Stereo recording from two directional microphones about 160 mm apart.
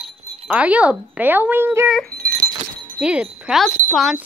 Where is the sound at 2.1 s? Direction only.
65° right (ahead or behind).